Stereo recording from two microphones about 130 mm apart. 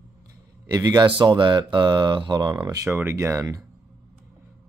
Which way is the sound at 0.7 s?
30° right (ahead or behind).